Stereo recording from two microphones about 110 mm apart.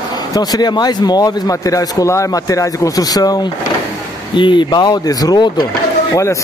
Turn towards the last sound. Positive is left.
turn(degrees=30)  # may be behind; listen again after turning